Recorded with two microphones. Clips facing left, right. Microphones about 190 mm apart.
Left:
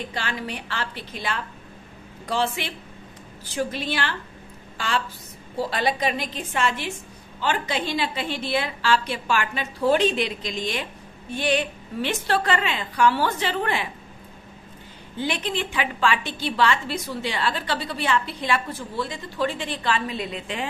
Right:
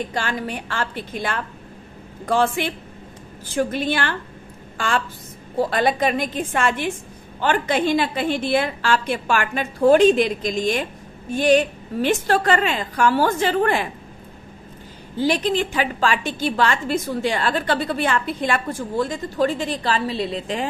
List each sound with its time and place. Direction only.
0.1 s a woman's voice: 45° right (ahead or behind)
15.1 s a woman's voice: 40° right (ahead or behind)